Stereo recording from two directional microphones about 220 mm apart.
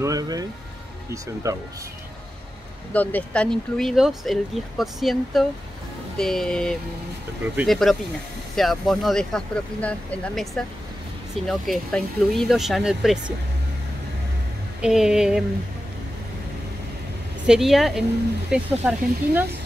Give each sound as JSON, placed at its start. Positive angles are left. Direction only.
{"t": 0.0, "sound": "speech", "side_deg": -15}
{"t": 2.9, "sound": "speech", "side_deg": 5}
{"t": 14.8, "sound": "speech", "side_deg": -5}
{"t": 17.5, "sound": "speech", "side_deg": 0}